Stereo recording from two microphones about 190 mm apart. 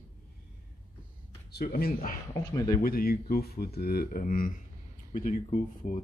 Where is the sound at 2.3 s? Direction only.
20° left (ahead or behind).